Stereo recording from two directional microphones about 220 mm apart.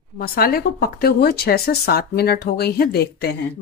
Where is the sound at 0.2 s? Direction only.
45° left (ahead or behind).